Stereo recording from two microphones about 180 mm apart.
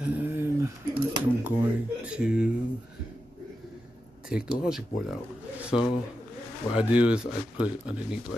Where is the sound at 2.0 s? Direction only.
5° right (ahead or behind).